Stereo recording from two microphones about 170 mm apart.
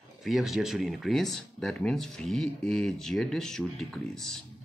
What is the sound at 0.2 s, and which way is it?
Speech, centre (ahead or behind).